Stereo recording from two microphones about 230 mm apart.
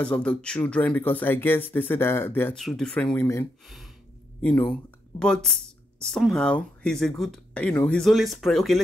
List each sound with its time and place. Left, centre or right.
0.0 s speech: centre
3.6 s speech: centre